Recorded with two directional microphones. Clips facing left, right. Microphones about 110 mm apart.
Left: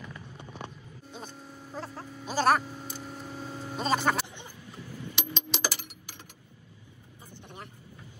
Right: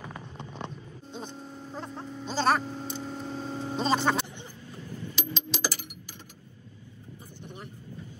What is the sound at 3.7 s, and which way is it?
Vehicle, 5° left (ahead or behind).